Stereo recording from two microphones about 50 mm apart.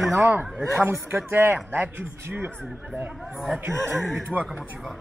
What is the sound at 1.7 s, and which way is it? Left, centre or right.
Speech, right.